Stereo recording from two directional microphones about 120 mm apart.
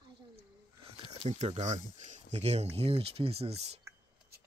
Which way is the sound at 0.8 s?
55° right (ahead or behind).